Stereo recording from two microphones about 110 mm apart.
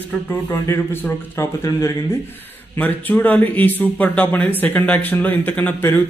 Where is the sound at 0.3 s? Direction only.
20° left (ahead or behind).